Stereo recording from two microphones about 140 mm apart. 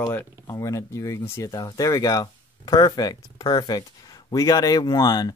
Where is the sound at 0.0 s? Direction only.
25° left (ahead or behind).